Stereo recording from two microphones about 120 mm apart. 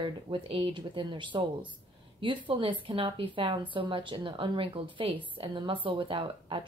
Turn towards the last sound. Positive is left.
turn(degrees=-45)  # may be behind; listen again after turning